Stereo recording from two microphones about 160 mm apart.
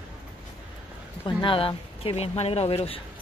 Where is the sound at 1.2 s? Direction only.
30° left (ahead or behind).